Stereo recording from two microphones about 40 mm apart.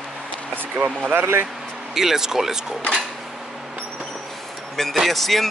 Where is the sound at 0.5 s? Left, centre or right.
Right.